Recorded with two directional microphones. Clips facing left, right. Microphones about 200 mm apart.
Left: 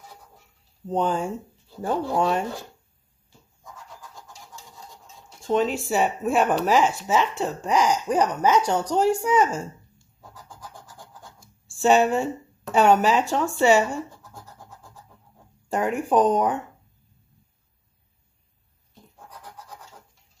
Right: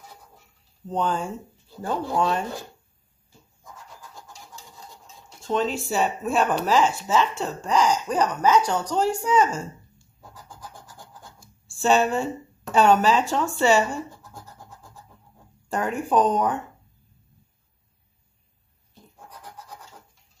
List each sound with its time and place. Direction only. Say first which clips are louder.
0.8 s speech: left 2 dB; 15° left (ahead or behind)
5.5 s speech: left 2 dB; 10° left (ahead or behind)
11.8 s speech: left 2 dB; 15° left (ahead or behind)
15.7 s speech: left 1 dB; 20° left (ahead or behind)